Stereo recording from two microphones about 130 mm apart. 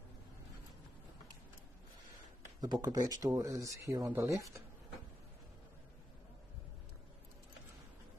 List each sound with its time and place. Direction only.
2.6 s a man's voice: 30° right (ahead or behind)